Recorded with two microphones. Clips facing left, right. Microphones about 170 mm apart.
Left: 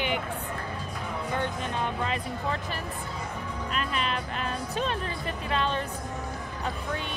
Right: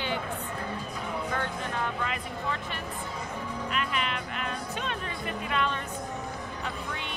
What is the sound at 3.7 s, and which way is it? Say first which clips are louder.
Speech: left 2 dB; 35° left (ahead or behind).